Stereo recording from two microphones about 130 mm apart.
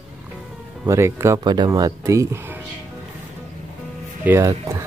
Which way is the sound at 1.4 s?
30° right (ahead or behind).